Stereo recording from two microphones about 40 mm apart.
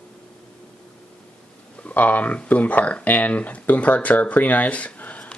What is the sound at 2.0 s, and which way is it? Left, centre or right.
Speech, left.